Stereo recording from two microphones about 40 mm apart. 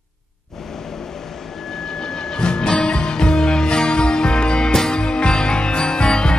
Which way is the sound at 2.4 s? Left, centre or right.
Left.